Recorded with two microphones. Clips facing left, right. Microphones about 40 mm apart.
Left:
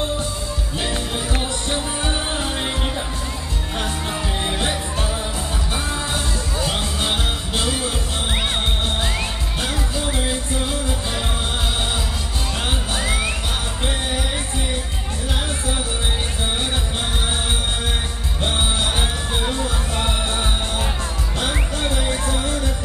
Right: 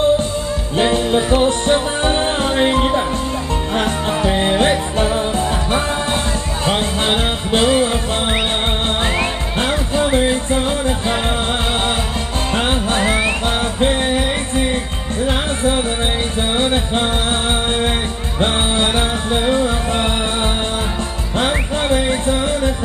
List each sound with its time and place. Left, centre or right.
0.7 s music: right
6.6 s music: right
12.5 s music: right
15.2 s music: right
18.4 s music: right
21.4 s music: right